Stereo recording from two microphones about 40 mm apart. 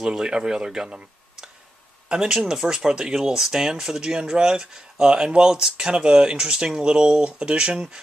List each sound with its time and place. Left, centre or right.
0.0 s speech: centre
0.8 s a sound: right
2.0 s speech: right